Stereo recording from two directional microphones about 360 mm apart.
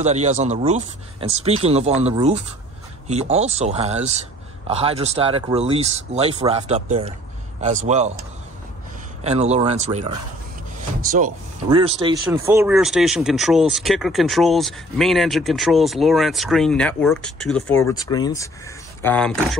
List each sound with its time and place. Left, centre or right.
0.0 s speech: centre
9.2 s speech: centre